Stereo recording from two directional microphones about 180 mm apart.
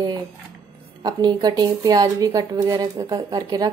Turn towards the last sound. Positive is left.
turn(degrees=-20)  # may be behind; listen again after turning